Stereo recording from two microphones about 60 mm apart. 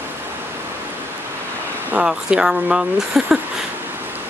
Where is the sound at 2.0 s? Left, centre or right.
Centre.